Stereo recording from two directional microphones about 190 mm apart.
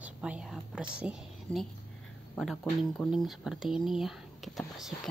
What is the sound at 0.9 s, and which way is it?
A woman's voice, 5° right (ahead or behind).